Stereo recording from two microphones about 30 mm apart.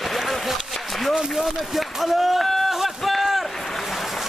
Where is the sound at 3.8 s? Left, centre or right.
Centre.